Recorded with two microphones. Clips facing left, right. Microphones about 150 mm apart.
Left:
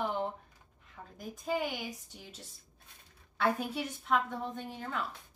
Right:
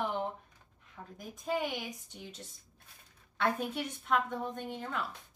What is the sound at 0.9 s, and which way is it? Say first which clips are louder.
A woman's voice: left 1 dB; centre (ahead or behind).